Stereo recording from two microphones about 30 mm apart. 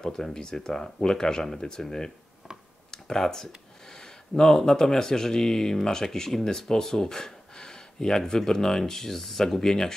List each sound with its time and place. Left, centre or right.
0.1 s speech: centre
2.9 s computer keyboard: centre
3.9 s a sound: centre
4.6 s speech: centre
9.6 s speech: centre